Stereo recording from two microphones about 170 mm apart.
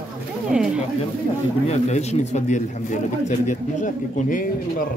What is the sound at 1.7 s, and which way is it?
A man's voice, 40° left (ahead or behind).